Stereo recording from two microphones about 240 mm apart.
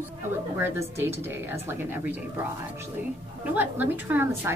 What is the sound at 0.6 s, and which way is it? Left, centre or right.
A woman's voice, centre.